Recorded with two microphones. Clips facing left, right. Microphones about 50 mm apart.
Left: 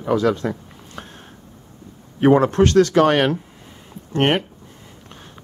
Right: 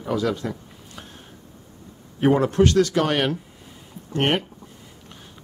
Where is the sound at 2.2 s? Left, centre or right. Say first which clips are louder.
Left 4 dB; left.